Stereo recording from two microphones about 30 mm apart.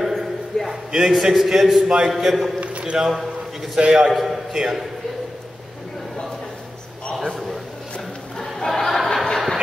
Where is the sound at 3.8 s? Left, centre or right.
Right.